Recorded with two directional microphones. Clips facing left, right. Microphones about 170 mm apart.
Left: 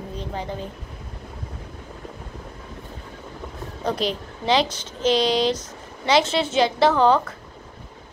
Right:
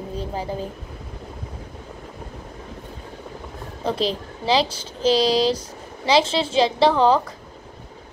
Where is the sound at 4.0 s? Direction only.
30° right (ahead or behind).